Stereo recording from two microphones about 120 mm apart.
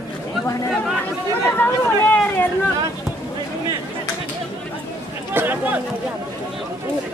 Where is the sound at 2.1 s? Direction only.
15° left (ahead or behind).